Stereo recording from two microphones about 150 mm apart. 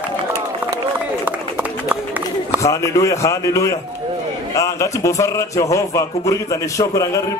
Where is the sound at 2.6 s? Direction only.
20° left (ahead or behind).